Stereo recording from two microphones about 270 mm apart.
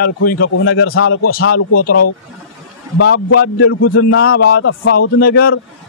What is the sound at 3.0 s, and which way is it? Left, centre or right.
A man's voice, left.